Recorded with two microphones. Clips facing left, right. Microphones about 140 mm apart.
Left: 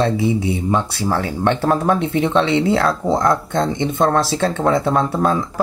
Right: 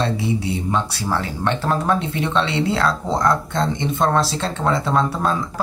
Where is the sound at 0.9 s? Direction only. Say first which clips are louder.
Left 3 dB; 55° left (ahead or behind).